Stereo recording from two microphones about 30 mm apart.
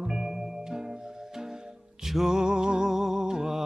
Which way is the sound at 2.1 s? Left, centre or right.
Centre.